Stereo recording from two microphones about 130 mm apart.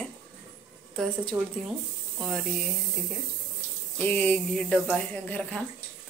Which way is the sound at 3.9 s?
15° left (ahead or behind).